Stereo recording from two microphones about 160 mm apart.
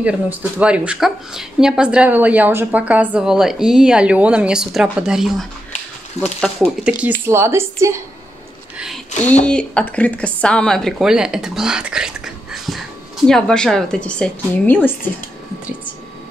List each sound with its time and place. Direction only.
0.0 s speech: 10° right (ahead or behind)
6.2 s speech: 40° left (ahead or behind)
6.6 s speech: 10° right (ahead or behind)
8.7 s speech: centre (ahead or behind)
12.5 s a sound: centre (ahead or behind)
13.3 s speech: 5° left (ahead or behind)